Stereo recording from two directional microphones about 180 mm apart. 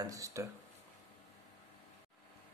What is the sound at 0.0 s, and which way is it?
Speech, 20° right (ahead or behind).